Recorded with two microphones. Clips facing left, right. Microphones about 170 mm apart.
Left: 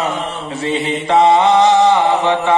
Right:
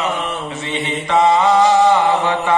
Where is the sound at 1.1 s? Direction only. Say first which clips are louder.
Left 3 dB; 30° left (ahead or behind).